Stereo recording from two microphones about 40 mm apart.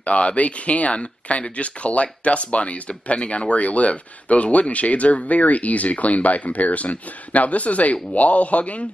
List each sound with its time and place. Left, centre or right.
0.0 s speech: left